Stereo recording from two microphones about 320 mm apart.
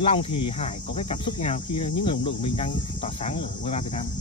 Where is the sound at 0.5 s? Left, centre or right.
Centre.